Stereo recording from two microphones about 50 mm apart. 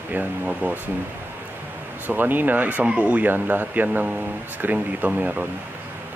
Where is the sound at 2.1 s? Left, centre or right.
Right.